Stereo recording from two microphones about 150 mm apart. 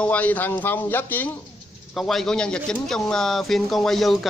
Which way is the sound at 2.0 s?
Centre (ahead or behind).